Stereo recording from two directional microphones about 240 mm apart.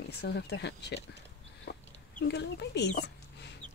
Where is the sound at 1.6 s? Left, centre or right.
Left.